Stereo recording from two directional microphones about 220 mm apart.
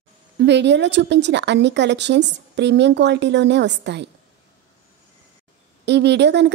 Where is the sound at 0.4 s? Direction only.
50° right (ahead or behind).